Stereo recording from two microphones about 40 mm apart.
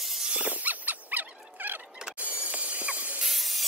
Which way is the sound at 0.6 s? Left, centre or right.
Right.